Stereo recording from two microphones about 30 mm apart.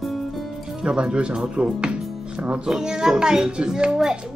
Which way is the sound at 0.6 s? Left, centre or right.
Right.